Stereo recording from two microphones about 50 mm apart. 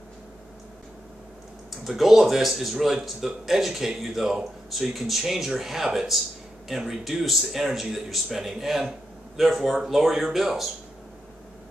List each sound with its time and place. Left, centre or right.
1.7 s speech: centre